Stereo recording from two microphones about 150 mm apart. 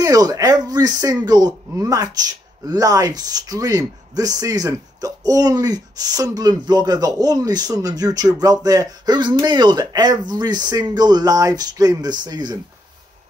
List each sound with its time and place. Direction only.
0.0 s speech: 25° right (ahead or behind)